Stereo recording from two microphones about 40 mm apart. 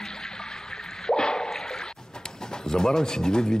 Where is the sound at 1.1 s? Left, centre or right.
Centre.